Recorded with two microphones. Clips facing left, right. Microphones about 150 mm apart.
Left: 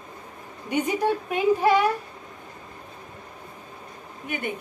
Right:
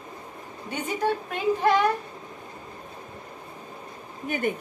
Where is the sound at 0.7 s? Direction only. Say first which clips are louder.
Left 3 dB; 15° left (ahead or behind).